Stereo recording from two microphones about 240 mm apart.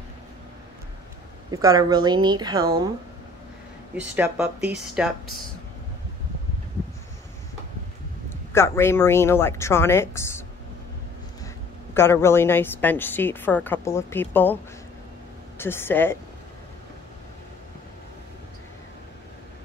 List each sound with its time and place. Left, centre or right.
1.5 s a woman's voice: centre
3.9 s speech: centre
8.3 s a woman's voice: centre
11.4 s a woman's voice: centre